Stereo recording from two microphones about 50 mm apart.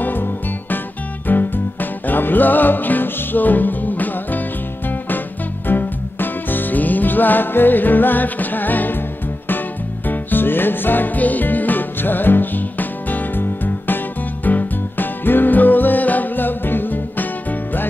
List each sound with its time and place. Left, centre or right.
0.0 s music: left
10.0 s music: left